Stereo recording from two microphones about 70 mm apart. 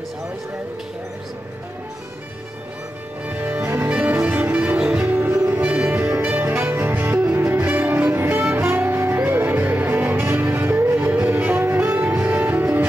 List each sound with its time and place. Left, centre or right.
3.3 s music: right
5.0 s music: right
5.6 s music: centre